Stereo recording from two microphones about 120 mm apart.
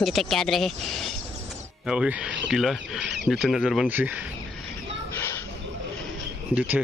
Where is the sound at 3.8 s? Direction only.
15° right (ahead or behind).